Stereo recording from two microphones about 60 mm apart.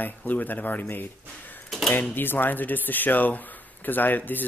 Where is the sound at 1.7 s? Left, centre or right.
Centre.